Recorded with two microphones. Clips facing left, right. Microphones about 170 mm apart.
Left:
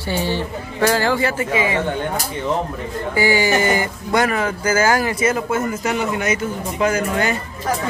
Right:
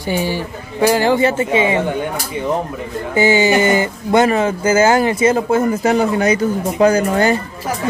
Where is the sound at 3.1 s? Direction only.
20° right (ahead or behind).